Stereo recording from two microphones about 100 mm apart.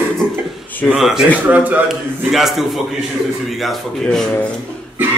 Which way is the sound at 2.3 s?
Centre (ahead or behind).